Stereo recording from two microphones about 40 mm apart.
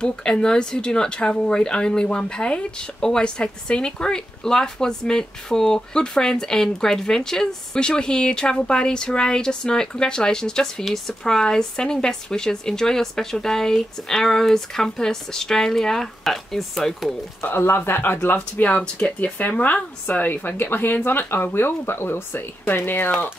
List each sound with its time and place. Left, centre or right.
0.0 s speech: left; by 17.1 s centre
17.4 s speech: left
18.6 s speech: left
22.7 s speech: left